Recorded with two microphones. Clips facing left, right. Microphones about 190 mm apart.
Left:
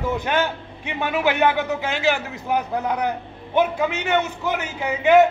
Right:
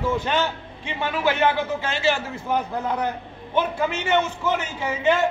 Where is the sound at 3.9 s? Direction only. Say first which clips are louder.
Even; 60° left (ahead or behind).